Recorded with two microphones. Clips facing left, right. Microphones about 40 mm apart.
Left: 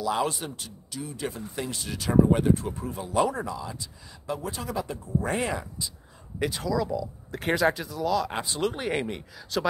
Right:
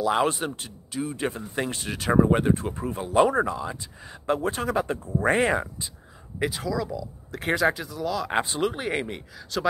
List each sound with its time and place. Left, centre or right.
0.0 s speech: right
6.4 s speech: centre
8.3 s speech: right
8.5 s speech: centre